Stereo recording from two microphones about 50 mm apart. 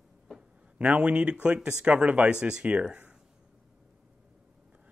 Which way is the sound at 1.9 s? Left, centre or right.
Right.